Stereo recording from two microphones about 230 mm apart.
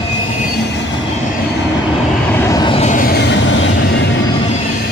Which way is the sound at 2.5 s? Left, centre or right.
Left.